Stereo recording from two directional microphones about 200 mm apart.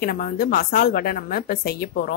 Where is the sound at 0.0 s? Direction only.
45° left (ahead or behind).